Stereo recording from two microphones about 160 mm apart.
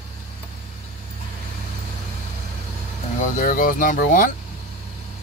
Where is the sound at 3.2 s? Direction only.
55° left (ahead or behind).